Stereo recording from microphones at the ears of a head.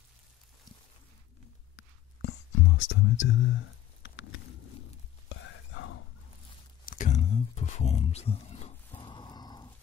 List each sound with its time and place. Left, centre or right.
1.4 s whispering: left
6.9 s speech: left